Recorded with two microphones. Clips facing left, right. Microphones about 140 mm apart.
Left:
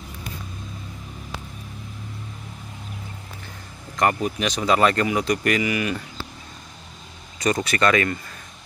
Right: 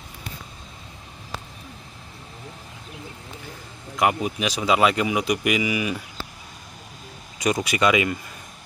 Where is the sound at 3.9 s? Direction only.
5° right (ahead or behind).